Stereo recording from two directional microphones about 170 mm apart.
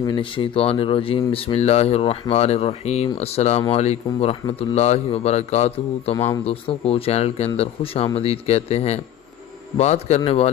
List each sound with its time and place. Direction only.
0.0 s speech: 30° left (ahead or behind)
6.1 s speech: 20° left (ahead or behind)
6.4 s speech: 35° left (ahead or behind)